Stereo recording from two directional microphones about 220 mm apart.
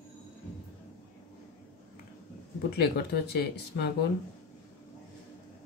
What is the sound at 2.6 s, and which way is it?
Speech, 45° left (ahead or behind).